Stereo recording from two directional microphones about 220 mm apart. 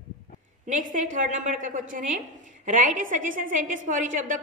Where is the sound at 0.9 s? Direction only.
35° right (ahead or behind).